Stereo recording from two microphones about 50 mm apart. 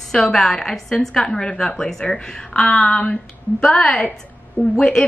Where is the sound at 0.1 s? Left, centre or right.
Centre.